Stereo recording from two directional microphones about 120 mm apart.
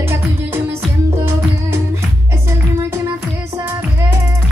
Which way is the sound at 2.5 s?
25° right (ahead or behind).